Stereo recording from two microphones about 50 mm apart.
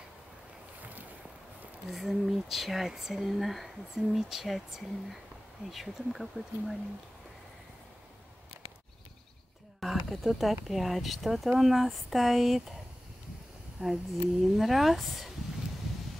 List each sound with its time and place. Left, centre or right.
1.9 s speech: centre
9.8 s speech: centre
13.8 s speech: right
14.4 s speech: centre